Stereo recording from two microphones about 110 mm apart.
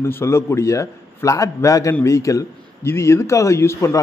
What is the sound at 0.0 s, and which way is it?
A man's voice, 25° left (ahead or behind).